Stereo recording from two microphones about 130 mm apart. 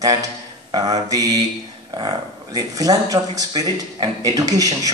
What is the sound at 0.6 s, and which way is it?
Mantra, 30° right (ahead or behind).